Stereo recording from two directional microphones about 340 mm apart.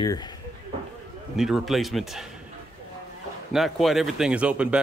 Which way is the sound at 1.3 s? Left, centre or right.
Centre.